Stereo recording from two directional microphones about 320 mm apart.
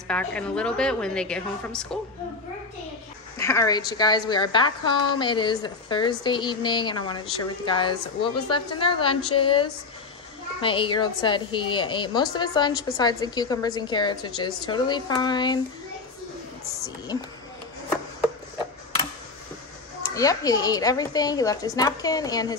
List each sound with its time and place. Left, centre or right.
0.1 s a woman's voice: centre
3.3 s a woman's voice: centre
20.0 s a woman's voice: centre